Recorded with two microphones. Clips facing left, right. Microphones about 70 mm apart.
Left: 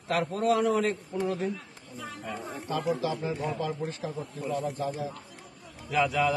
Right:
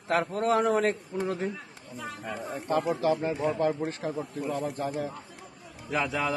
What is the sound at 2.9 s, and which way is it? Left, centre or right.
Speech, right.